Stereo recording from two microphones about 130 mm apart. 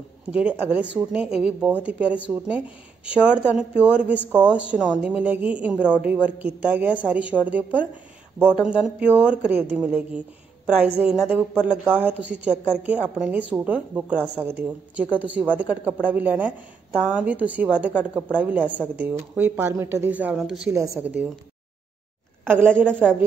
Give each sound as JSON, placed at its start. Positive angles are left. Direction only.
{"t": 0.3, "sound": "a woman's voice", "side_deg": -10}
{"t": 20.7, "sound": "a woman's voice", "side_deg": -25}
{"t": 21.0, "sound": "speech", "side_deg": -10}
{"t": 22.4, "sound": "a woman's voice", "side_deg": -15}